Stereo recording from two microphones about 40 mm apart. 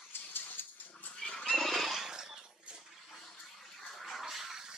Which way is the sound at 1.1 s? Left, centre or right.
Left.